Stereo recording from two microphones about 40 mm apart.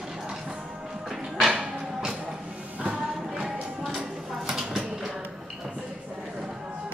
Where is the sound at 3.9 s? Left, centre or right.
Centre.